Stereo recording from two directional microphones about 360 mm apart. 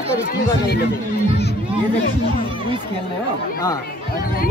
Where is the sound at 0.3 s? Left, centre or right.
Left.